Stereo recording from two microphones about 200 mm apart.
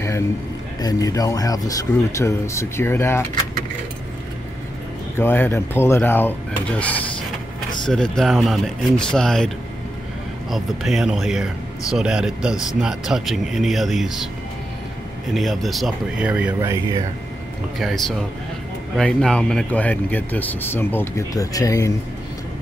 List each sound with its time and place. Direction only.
0.7 s speech: 20° left (ahead or behind)
5.1 s speech: 10° left (ahead or behind)
10.5 s speech: centre (ahead or behind)
15.3 s speech: centre (ahead or behind)
17.7 s speech: centre (ahead or behind); by 21.9 s 15° left (ahead or behind)